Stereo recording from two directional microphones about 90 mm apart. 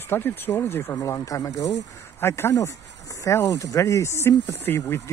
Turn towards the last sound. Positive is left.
turn(degrees=30)  # may be behind; listen again after turning